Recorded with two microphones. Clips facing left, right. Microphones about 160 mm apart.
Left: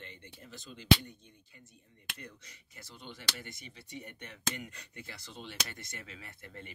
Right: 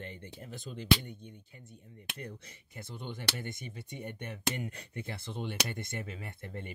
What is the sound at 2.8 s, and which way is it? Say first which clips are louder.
Speech: right 7 dB; 55° right (ahead or behind).